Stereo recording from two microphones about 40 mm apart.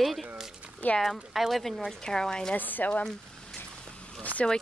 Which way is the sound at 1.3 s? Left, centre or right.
Centre.